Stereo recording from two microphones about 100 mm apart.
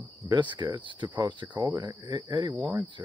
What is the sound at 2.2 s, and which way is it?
Speech, 50° right (ahead or behind).